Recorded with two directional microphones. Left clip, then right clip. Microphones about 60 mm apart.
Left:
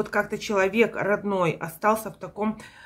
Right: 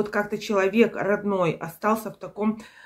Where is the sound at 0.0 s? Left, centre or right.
Left.